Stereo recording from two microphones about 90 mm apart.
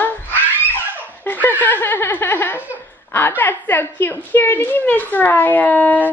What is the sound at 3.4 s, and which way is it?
A woman's voice, 20° left (ahead or behind).